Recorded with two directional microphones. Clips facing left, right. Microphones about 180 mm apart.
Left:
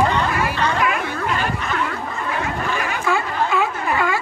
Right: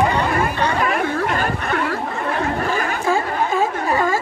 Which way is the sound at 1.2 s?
50° right (ahead or behind).